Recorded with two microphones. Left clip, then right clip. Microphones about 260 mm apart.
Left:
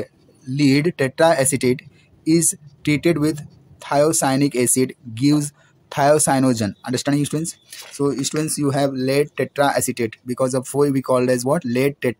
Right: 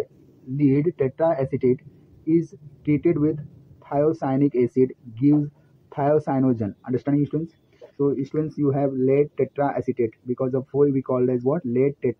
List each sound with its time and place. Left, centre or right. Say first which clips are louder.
0.6 s speech: left 3 dB; left